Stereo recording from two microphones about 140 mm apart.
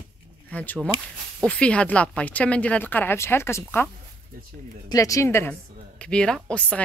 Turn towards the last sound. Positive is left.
turn(degrees=10)  # may be behind; listen again after turning